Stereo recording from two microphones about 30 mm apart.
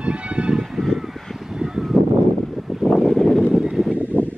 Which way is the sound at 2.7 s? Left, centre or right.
Centre.